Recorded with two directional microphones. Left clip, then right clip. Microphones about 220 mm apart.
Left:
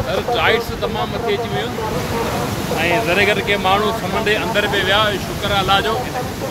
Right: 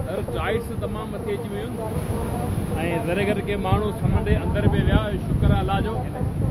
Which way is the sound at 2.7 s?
45° right (ahead or behind).